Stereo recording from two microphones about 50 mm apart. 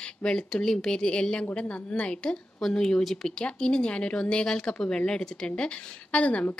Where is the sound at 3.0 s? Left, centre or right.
Centre.